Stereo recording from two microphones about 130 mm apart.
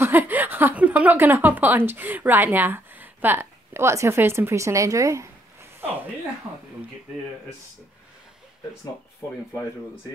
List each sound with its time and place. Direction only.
0.0 s a woman's voice: 15° right (ahead or behind)